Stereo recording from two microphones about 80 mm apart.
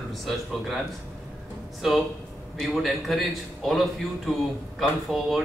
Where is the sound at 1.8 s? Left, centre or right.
Centre.